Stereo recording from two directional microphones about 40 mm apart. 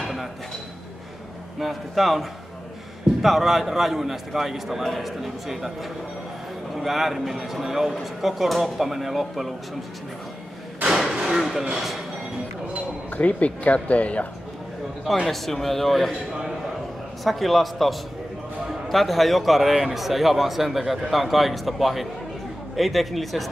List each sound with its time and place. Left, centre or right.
0.0 s dishes: centre
1.6 s a man's voice: centre
10.9 s a sound: centre
11.1 s vehicle: centre
11.7 s a man's voice: centre
13.1 s speech: left
15.2 s a man's voice: centre
17.2 s a man's voice: centre